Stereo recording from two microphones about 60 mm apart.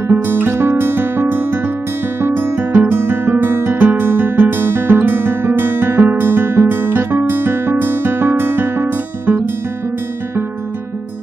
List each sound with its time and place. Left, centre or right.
0.1 s music: right
5.9 s guitar: right